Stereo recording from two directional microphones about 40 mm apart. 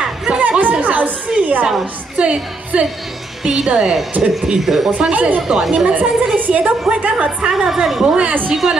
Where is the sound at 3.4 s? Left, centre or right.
Centre.